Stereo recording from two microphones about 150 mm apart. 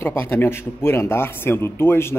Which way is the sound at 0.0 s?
15° left (ahead or behind).